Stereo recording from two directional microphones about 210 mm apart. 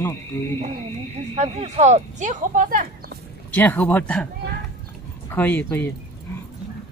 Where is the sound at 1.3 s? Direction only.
30° right (ahead or behind).